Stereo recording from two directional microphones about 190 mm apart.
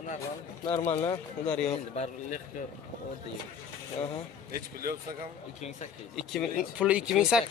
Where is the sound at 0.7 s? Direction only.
35° left (ahead or behind).